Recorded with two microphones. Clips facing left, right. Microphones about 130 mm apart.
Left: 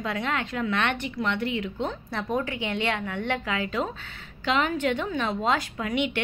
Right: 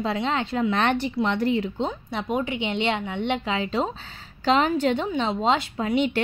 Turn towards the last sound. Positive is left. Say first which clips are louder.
# right 4 dB
turn(degrees=-30)  # may be behind; listen again after turning